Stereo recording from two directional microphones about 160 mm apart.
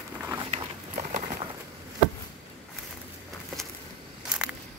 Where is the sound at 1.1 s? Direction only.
45° right (ahead or behind).